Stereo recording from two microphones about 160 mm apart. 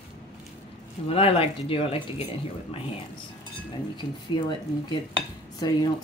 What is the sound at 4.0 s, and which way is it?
Speech, 30° left (ahead or behind).